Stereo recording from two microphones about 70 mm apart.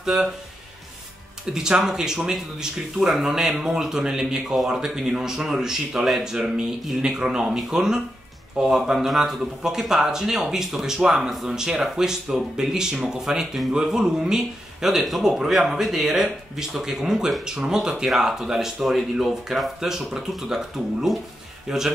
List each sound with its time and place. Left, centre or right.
0.0 s speech: centre
1.5 s speech: centre
12.9 s speech: centre
13.2 s speech: centre